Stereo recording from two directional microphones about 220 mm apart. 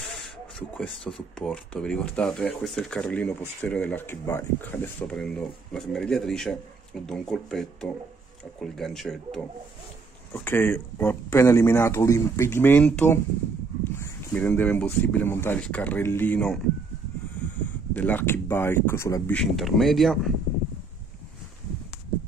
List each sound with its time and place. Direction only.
0.6 s speech: 5° left (ahead or behind)
17.6 s speech: 10° left (ahead or behind)